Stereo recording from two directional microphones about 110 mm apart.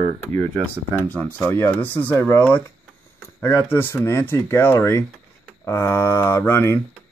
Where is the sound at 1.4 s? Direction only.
25° left (ahead or behind).